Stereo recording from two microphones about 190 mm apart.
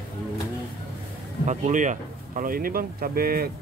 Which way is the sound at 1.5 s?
40° right (ahead or behind).